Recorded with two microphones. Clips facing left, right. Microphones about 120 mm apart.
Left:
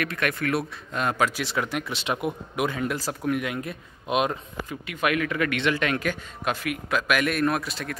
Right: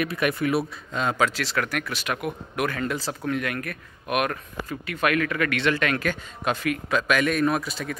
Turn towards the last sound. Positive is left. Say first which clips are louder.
# right 1 dB
turn(degrees=0)  # may be behind; listen again after turning